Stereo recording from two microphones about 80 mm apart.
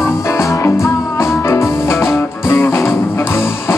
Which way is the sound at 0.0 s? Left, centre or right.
Left.